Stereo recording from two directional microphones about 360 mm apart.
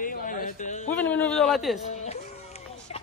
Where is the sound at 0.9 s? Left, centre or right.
Centre.